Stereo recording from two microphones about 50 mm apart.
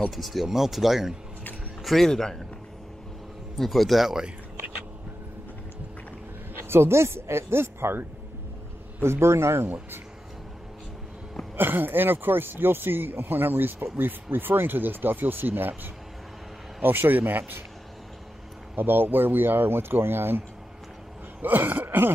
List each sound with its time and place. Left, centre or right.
0.1 s speech: centre
1.8 s speech: centre
3.5 s speech: centre
6.6 s speech: right
9.0 s speech: right
11.5 s speech: right
18.8 s speech: right
21.4 s a sound: right